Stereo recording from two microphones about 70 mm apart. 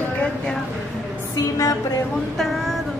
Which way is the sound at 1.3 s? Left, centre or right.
Left.